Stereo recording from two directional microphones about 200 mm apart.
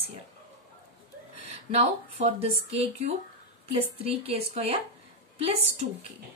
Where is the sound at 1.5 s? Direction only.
30° right (ahead or behind).